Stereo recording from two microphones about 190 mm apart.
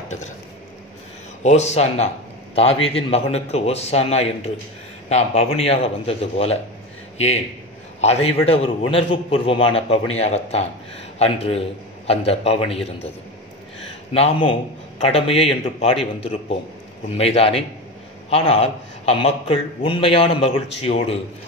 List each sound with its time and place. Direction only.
1.4 s a man's voice: 35° left (ahead or behind)
8.0 s a man's voice: 35° left (ahead or behind)
14.1 s a man's voice: 30° left (ahead or behind)